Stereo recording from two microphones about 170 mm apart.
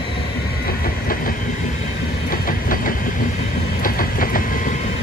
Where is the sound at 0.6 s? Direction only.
60° left (ahead or behind).